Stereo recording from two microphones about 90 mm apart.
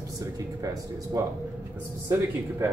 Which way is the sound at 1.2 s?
40° right (ahead or behind).